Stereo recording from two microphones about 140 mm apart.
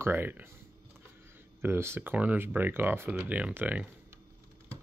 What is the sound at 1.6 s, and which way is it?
Speech, 15° right (ahead or behind).